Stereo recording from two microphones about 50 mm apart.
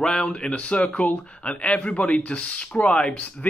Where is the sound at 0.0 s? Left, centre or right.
Centre.